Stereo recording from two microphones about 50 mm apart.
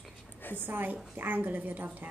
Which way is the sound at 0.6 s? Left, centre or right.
Right.